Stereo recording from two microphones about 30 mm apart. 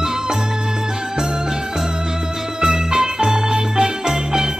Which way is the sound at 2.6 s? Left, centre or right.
Right.